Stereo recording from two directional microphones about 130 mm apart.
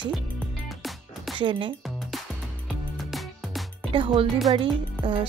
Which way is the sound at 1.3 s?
40° right (ahead or behind).